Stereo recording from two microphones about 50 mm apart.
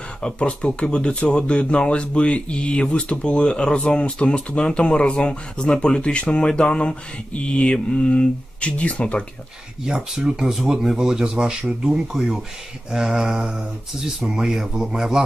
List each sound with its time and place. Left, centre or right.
0.2 s speech: centre
9.8 s speech: centre